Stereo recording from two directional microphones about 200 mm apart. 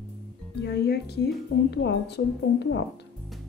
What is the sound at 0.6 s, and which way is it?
A woman's voice, 55° left (ahead or behind).